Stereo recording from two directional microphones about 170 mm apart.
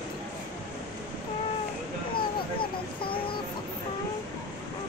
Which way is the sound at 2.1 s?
30° left (ahead or behind).